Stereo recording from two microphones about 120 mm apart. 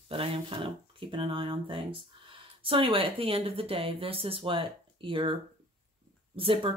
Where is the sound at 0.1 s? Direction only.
50° right (ahead or behind).